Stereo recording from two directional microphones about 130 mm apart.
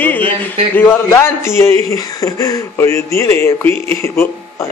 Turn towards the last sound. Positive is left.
turn(degrees=20)  # may be behind; listen again after turning